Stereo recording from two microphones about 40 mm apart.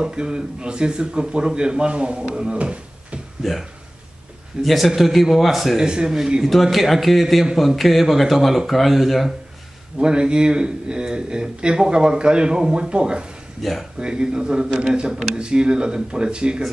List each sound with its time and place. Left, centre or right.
0.0 s speech: right
4.6 s speech: centre
5.8 s speech: centre
6.4 s speech: centre
9.9 s speech: right
13.6 s speech: centre
13.9 s speech: right